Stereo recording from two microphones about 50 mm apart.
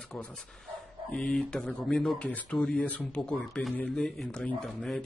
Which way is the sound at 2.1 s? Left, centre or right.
Left.